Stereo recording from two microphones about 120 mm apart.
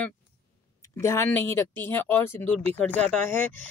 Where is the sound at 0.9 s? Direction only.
20° left (ahead or behind).